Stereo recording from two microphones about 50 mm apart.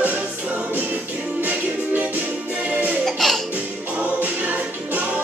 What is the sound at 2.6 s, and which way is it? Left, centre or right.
Music, right.